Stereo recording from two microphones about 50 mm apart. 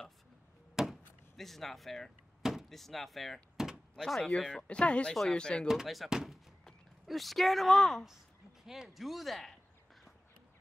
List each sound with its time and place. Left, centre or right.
0.8 s chop: centre
1.3 s speech: centre
3.6 s door: centre
3.9 s speech: centre
5.7 s speech: centre
7.1 s speech: centre
8.6 s speech: centre